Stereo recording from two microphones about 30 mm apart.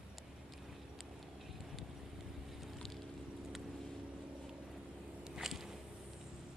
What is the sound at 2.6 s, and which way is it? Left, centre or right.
Boat, centre.